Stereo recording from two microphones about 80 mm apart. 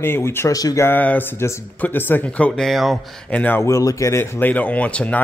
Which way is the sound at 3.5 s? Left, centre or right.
Left.